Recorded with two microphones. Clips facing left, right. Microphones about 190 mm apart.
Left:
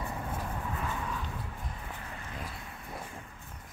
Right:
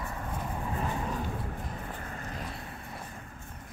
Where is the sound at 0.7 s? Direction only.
35° right (ahead or behind).